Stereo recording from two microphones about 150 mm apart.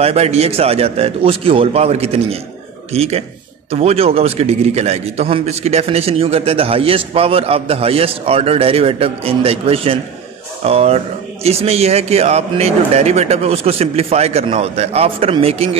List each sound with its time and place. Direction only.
0.0 s a man's voice: 45° right (ahead or behind)